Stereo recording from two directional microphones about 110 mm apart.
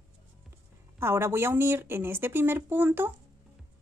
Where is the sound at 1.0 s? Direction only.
20° right (ahead or behind).